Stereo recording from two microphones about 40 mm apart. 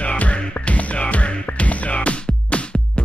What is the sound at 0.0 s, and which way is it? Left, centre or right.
Music, left.